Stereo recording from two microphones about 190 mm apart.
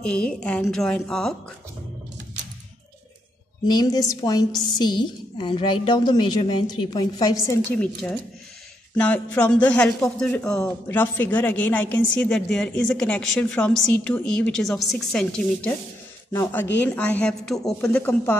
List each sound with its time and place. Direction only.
0.0 s speech: 5° left (ahead or behind)
3.6 s a woman's voice: 20° left (ahead or behind); by 15.7 s 5° left (ahead or behind)
16.8 s speech: 5° left (ahead or behind)